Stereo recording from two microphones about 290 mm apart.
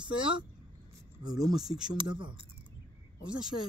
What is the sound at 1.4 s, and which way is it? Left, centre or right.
Speech, centre.